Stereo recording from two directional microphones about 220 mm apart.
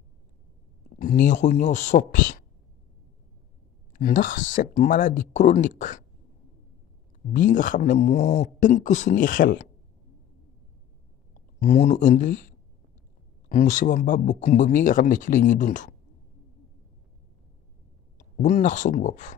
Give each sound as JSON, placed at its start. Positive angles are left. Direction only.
{"t": 0.9, "sound": "speech", "side_deg": 35}
{"t": 3.9, "sound": "speech", "side_deg": 40}
{"t": 7.3, "sound": "speech", "side_deg": 40}
{"t": 11.3, "sound": "speech", "side_deg": 30}
{"t": 13.5, "sound": "speech", "side_deg": 35}
{"t": 18.4, "sound": "speech", "side_deg": 35}